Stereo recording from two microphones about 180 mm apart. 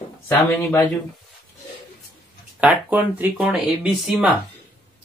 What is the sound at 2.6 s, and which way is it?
Speech, 10° right (ahead or behind).